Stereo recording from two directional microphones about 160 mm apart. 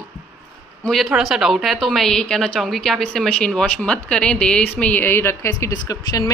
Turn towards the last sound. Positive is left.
turn(degrees=25)  # may be behind; listen again after turning